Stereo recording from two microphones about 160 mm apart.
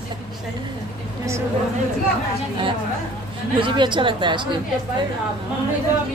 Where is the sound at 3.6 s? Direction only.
30° right (ahead or behind).